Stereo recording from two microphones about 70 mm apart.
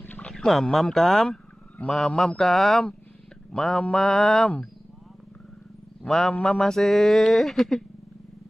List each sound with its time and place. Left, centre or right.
0.0 s a sound: left
0.3 s speech: centre
6.0 s mantra: centre